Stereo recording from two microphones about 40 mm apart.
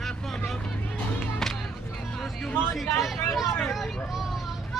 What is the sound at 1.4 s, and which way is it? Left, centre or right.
Music, centre.